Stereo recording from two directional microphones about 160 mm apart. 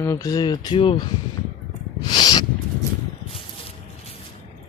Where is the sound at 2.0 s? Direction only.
25° left (ahead or behind).